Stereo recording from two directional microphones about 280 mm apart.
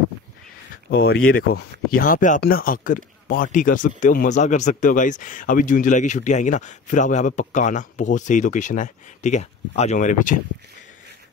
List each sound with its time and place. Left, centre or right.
0.8 s speech: left